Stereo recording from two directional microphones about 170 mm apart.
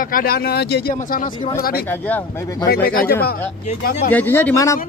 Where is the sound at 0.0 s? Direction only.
60° left (ahead or behind); by 0.9 s 75° left (ahead or behind).